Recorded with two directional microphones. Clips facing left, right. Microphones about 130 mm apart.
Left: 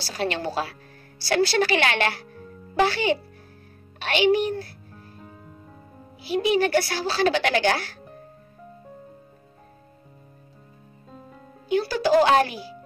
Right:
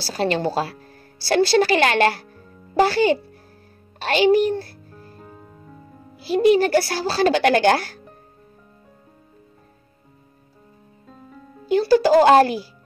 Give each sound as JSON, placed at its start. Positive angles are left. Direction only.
{"t": 0.0, "sound": "a woman's voice", "side_deg": -35}
{"t": 6.2, "sound": "a woman's voice", "side_deg": -40}
{"t": 11.6, "sound": "a woman's voice", "side_deg": -35}